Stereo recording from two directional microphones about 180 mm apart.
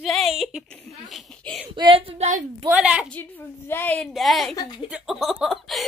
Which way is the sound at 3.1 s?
10° left (ahead or behind).